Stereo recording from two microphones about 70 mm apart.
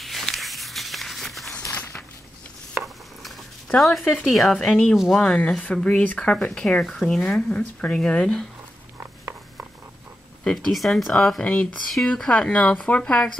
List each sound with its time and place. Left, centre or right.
0.0 s a sound: centre
2.8 s stir: centre
4.2 s speech: centre
4.9 s speech: centre
5.2 s speech: centre
10.5 s speech: centre